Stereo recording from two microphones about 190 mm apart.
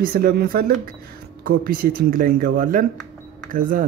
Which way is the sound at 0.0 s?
50° right (ahead or behind).